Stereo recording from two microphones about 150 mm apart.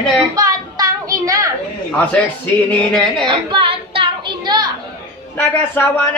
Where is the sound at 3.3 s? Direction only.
35° right (ahead or behind).